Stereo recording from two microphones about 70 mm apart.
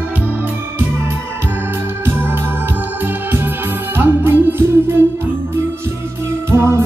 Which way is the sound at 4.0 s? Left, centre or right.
Right.